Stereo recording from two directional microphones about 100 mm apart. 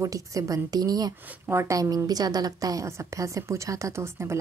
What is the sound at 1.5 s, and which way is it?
A woman's voice, 30° right (ahead or behind).